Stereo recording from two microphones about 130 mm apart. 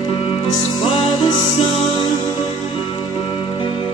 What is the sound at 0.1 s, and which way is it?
Music, 45° left (ahead or behind).